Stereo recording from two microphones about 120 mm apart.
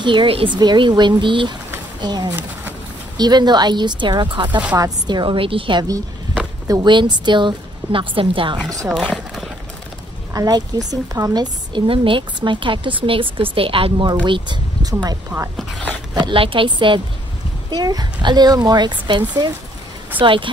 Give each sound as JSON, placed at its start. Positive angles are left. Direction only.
{"t": 0.0, "sound": "a woman's voice", "side_deg": -45}
{"t": 8.8, "sound": "speech", "side_deg": -5}
{"t": 10.3, "sound": "speech", "side_deg": -30}
{"t": 11.7, "sound": "a woman's voice", "side_deg": -45}
{"t": 16.2, "sound": "a woman's voice", "side_deg": -45}